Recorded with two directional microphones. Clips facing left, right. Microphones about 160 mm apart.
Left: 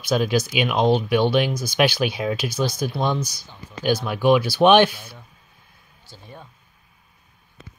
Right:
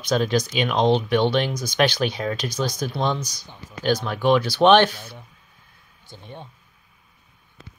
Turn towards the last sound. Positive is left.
turn(degrees=-25)  # may be behind; listen again after turning